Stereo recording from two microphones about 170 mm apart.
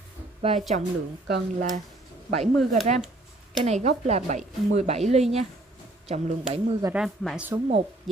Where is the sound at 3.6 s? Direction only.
40° right (ahead or behind).